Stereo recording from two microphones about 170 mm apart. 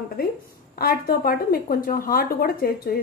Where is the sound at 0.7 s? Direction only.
60° left (ahead or behind).